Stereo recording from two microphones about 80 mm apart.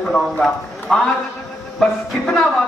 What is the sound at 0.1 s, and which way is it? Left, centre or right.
Speech, centre.